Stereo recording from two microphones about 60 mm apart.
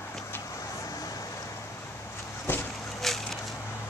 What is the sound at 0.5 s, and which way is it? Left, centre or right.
Vehicle, left.